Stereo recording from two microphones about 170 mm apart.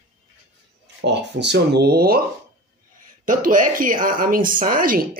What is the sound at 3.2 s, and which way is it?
Speech, 50° right (ahead or behind).